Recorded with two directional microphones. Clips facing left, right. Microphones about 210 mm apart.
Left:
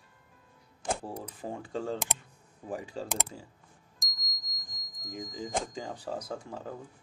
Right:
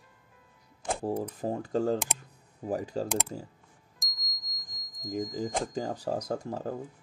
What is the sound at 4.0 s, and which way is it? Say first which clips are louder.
Music: even; centre (ahead or behind).